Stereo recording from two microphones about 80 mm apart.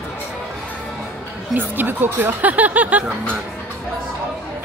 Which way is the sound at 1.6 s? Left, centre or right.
Right.